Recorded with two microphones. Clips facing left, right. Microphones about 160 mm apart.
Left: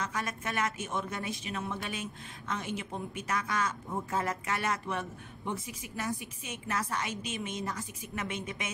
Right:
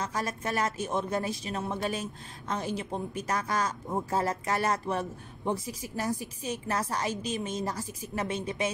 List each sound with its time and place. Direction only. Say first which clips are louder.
0.0 s a woman's voice: right 3 dB; 35° right (ahead or behind)